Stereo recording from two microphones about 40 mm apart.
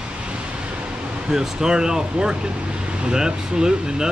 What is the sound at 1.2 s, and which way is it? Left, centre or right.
Speech, centre.